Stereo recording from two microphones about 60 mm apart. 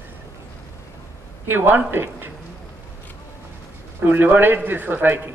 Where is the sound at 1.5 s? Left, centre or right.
Right.